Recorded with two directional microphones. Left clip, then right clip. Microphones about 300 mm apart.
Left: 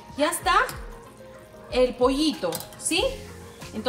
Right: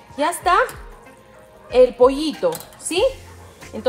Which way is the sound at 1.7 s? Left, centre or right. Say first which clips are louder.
Right 8 dB; right.